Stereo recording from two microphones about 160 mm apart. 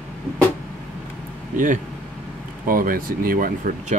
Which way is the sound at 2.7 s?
65° right (ahead or behind).